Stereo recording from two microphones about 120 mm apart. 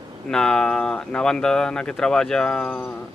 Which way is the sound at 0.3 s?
5° left (ahead or behind).